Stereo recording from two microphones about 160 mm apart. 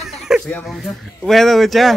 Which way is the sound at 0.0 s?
Centre (ahead or behind).